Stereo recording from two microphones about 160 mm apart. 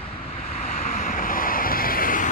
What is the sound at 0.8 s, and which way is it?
Vehicle, 55° left (ahead or behind).